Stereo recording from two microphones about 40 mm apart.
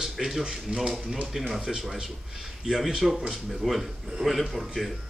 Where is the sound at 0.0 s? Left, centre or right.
Centre.